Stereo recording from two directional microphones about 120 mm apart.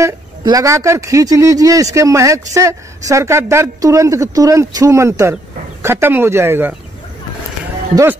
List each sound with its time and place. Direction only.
0.4 s speech: 30° right (ahead or behind)